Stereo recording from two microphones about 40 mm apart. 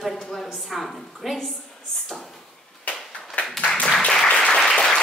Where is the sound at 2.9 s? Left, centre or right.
Left.